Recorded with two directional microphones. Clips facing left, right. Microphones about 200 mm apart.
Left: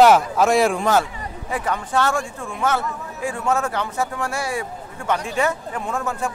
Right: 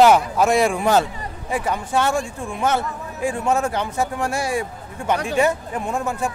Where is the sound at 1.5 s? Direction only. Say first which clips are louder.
Right 1 dB; 10° right (ahead or behind).